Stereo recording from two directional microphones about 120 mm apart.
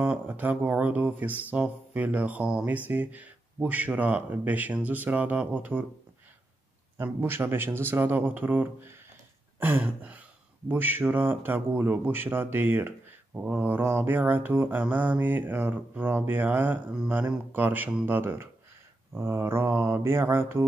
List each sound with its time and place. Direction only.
0.0 s speech: 15° right (ahead or behind)
7.0 s speech: 20° right (ahead or behind)